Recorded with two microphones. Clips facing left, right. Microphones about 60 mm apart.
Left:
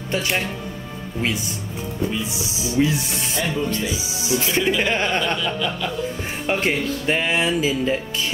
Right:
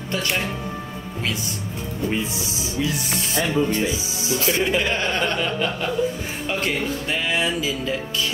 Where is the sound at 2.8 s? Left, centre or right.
Left.